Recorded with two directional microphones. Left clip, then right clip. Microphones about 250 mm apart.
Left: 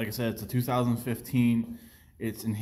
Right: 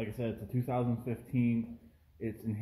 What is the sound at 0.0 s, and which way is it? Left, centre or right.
Speech, centre.